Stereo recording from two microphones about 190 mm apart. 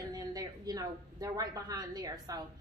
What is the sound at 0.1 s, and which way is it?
A woman's voice, 20° right (ahead or behind).